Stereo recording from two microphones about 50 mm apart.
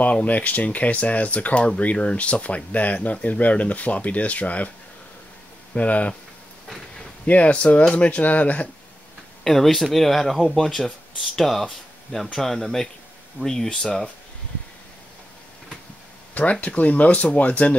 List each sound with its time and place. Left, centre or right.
0.0 s speech: left
5.8 s speech: left
7.2 s speech: left
9.4 s speech: centre
16.6 s speech: left